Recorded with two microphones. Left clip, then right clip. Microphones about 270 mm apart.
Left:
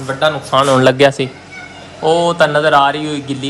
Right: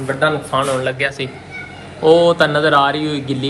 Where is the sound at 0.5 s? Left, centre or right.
Left.